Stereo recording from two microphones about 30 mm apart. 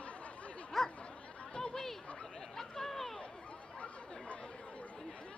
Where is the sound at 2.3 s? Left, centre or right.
Centre.